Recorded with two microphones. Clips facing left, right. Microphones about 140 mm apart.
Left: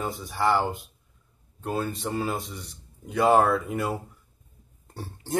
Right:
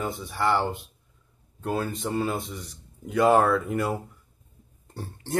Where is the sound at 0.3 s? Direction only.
Centre (ahead or behind).